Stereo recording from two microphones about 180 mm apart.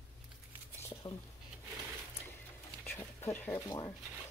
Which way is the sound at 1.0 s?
25° left (ahead or behind).